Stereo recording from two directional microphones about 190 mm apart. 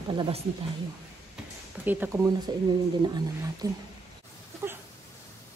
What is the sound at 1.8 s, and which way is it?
Speech, 10° right (ahead or behind).